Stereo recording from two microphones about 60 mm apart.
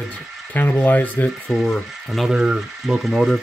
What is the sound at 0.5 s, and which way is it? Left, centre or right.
Speech, left.